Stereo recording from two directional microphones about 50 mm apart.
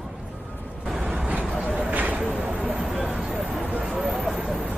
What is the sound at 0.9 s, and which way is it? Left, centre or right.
Vehicle, centre.